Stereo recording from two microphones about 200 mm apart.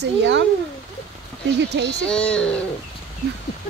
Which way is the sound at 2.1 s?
5° left (ahead or behind).